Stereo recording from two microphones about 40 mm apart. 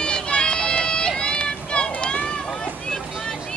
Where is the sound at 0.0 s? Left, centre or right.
Left.